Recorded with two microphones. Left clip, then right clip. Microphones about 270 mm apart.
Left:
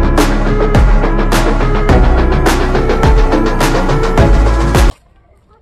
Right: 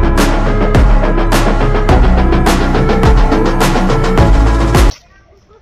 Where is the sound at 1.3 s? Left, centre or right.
Centre.